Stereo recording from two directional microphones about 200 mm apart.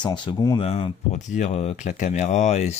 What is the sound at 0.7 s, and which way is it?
Speech, 35° left (ahead or behind).